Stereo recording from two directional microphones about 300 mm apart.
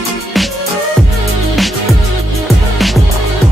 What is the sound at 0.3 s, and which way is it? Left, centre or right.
Music, centre.